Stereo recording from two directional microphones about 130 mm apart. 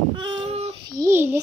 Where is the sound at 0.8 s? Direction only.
30° right (ahead or behind).